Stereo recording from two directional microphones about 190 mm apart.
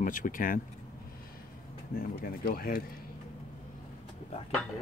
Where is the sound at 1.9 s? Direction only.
50° left (ahead or behind).